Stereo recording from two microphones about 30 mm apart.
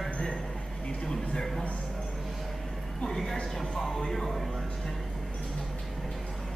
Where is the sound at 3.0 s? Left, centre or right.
Centre.